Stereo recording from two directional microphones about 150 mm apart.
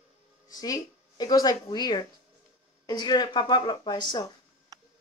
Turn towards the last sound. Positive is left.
turn(degrees=25)  # may be behind; listen again after turning